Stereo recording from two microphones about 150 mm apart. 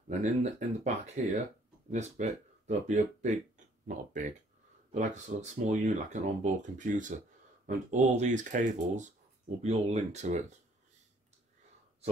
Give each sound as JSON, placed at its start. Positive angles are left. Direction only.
{"t": 0.2, "sound": "speech", "side_deg": -50}